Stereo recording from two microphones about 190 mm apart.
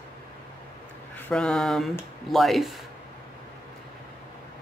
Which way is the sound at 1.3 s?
5° left (ahead or behind).